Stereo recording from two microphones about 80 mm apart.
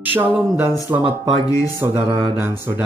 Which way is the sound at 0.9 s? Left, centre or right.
Centre.